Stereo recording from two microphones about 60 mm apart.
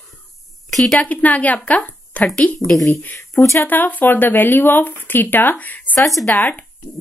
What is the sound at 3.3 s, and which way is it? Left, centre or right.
Speech, left.